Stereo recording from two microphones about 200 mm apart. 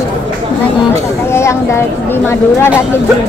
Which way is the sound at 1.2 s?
15° left (ahead or behind).